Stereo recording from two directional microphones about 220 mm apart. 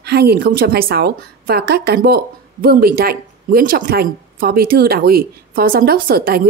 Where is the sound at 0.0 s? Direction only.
45° right (ahead or behind).